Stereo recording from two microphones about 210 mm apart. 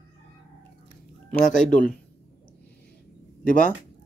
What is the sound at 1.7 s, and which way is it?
Speech, 40° left (ahead or behind).